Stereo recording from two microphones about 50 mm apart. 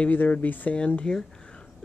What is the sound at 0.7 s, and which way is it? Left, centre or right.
Speech, left.